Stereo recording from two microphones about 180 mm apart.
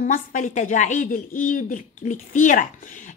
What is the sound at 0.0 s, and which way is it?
Speech, 45° left (ahead or behind).